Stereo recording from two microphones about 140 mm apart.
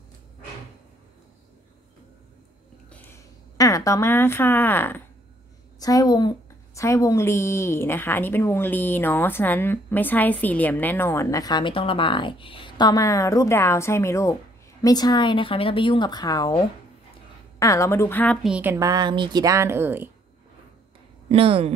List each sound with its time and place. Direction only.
3.5 s speech: 25° left (ahead or behind)
5.8 s a woman's voice: 25° left (ahead or behind)
18.4 s a woman's voice: 10° right (ahead or behind)
18.8 s speech: 30° right (ahead or behind)
21.3 s speech: 40° right (ahead or behind)